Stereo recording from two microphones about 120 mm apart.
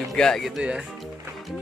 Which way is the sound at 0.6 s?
10° right (ahead or behind).